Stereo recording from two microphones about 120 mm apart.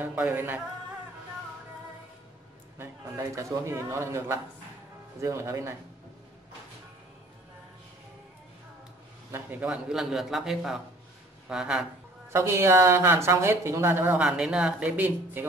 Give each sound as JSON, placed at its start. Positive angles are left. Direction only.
{"t": 0.0, "sound": "speech", "side_deg": -15}
{"t": 2.8, "sound": "speech", "side_deg": -25}
{"t": 9.3, "sound": "a man's voice", "side_deg": -15}
{"t": 12.3, "sound": "speech", "side_deg": -20}